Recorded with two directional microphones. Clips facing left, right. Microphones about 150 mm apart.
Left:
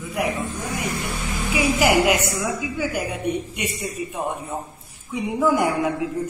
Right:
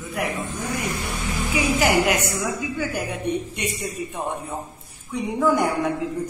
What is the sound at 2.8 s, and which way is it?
A man's voice, 10° left (ahead or behind).